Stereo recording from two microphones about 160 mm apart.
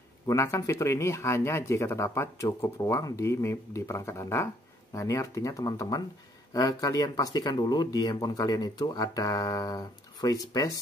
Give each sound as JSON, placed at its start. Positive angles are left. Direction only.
{"t": 0.3, "sound": "speech", "side_deg": 20}